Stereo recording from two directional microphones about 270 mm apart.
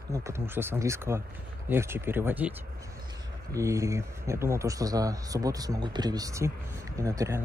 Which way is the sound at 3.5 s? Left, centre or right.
Centre.